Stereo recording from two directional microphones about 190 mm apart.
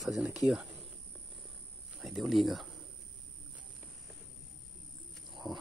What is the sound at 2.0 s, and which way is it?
Speech, centre (ahead or behind).